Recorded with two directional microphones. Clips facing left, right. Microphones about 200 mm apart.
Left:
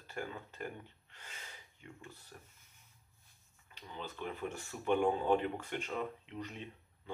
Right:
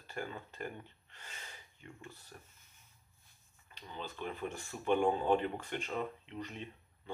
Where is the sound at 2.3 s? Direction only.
5° right (ahead or behind).